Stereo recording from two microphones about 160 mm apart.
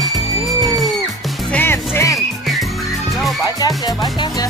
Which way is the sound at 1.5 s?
15° left (ahead or behind).